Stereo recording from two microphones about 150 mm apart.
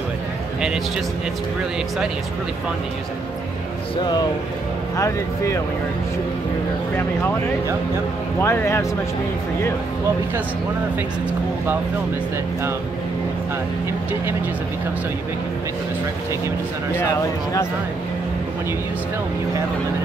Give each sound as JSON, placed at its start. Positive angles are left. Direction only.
{"t": 4.9, "sound": "speech", "side_deg": 20}
{"t": 8.4, "sound": "speech", "side_deg": 15}
{"t": 16.9, "sound": "speech", "side_deg": 20}